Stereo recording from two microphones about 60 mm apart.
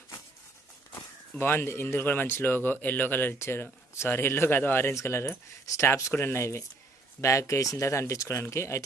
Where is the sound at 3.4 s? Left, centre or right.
Left.